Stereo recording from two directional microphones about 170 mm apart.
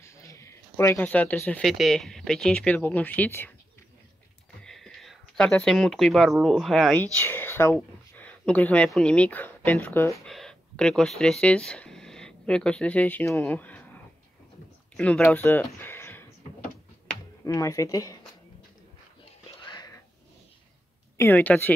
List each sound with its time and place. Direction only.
0.0 s speech: 15° left (ahead or behind)
4.6 s speech: 5° left (ahead or behind)
10.2 s speech: 5° left (ahead or behind)
17.5 s speech: 20° left (ahead or behind)
19.6 s whispering: 25° left (ahead or behind)
21.2 s speech: 10° left (ahead or behind)